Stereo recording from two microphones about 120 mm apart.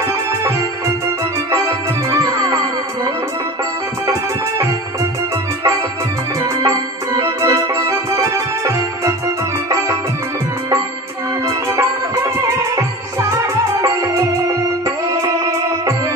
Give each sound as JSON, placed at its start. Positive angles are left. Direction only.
{"t": 0.4, "sound": "music", "side_deg": -25}
{"t": 6.6, "sound": "organ", "side_deg": -25}
{"t": 11.4, "sound": "music", "side_deg": -25}